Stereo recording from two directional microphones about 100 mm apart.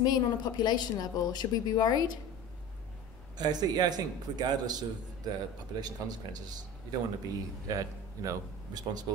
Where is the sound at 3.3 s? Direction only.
45° right (ahead or behind).